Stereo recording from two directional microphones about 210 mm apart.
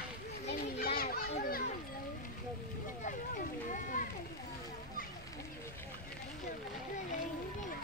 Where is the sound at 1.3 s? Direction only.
45° left (ahead or behind).